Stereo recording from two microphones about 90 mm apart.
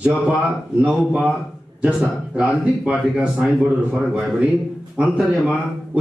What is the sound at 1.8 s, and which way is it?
A man's voice, 15° right (ahead or behind).